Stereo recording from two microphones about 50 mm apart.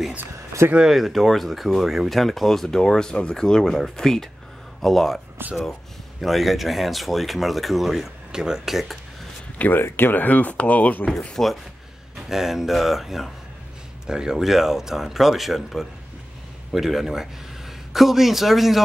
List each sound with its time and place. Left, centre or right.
0.8 s speech: centre
6.2 s speech: centre
9.8 s speech: left
11.4 s speech: centre
12.2 s speech: centre
14.0 s speech: centre